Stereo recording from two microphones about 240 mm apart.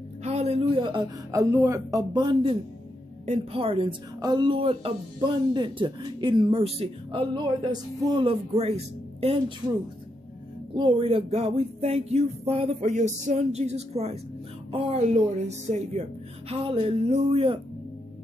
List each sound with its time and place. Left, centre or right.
0.2 s a woman's voice: right
10.7 s a woman's voice: right